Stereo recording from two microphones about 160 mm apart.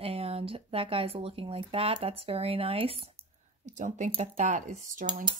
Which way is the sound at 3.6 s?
50° right (ahead or behind).